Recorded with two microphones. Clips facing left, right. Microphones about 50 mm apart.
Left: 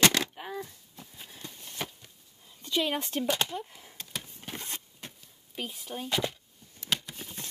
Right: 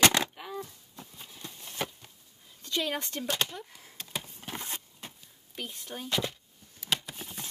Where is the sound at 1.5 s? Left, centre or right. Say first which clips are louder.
Right 3 dB; centre.